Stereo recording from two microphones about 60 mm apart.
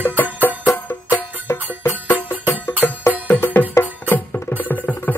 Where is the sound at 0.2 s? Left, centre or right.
Left.